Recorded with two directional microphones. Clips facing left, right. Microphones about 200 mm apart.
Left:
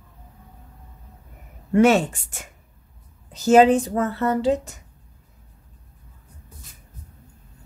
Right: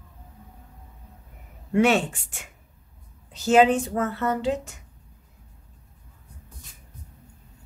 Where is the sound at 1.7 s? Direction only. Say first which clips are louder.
Left 4 dB; 40° left (ahead or behind).